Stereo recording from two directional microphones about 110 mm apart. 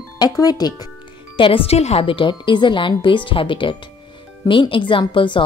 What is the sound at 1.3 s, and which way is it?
A woman's voice, 55° left (ahead or behind).